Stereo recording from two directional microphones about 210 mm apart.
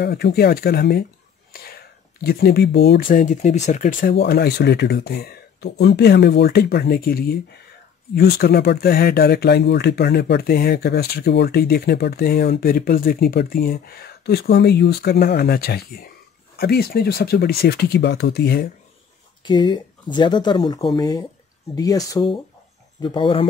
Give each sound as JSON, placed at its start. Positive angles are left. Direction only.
{"t": 0.0, "sound": "speech", "side_deg": 50}
{"t": 1.5, "sound": "whispering", "side_deg": 45}
{"t": 2.2, "sound": "speech", "side_deg": 45}
{"t": 4.2, "sound": "speech", "side_deg": 50}
{"t": 19.4, "sound": "speech", "side_deg": 20}